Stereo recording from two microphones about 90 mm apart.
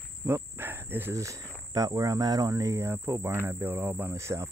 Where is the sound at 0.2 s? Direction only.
25° right (ahead or behind).